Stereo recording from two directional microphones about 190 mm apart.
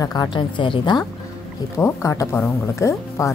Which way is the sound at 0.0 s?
20° left (ahead or behind).